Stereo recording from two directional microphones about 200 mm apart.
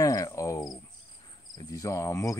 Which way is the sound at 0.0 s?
15° left (ahead or behind).